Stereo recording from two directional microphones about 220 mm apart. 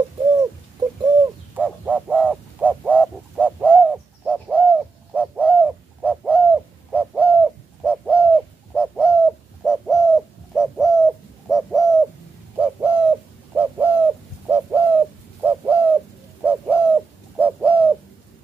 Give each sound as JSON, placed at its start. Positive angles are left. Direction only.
{"t": 1.0, "sound": "bird", "side_deg": -15}
{"t": 1.6, "sound": "frog", "side_deg": -5}
{"t": 8.7, "sound": "bird", "side_deg": -5}